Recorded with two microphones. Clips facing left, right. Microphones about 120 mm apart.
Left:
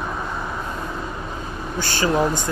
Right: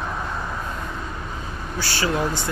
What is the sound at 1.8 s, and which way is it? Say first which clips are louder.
Speech: left 3 dB; 45° left (ahead or behind).